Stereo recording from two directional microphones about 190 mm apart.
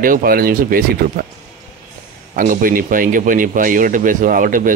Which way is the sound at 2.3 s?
45° right (ahead or behind).